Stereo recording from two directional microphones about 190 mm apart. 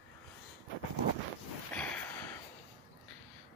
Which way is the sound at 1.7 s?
10° left (ahead or behind).